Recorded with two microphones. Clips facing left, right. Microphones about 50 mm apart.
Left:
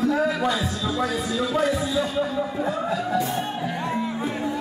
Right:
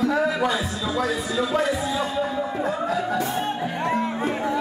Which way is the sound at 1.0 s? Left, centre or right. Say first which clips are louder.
Right 2 dB; right.